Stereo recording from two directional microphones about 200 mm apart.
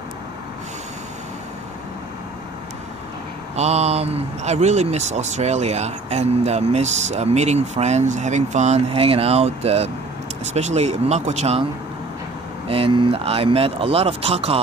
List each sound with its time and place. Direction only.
3.5 s speech: 35° right (ahead or behind)
12.6 s speech: 30° right (ahead or behind)